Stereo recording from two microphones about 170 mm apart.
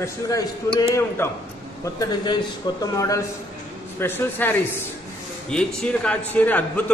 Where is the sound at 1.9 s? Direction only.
25° left (ahead or behind).